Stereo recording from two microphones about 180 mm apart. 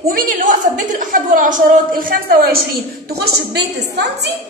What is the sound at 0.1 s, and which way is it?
A woman's voice, 50° right (ahead or behind).